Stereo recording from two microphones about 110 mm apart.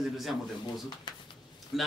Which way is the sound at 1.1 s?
45° left (ahead or behind).